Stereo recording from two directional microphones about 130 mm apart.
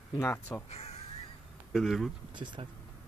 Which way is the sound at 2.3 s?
35° right (ahead or behind).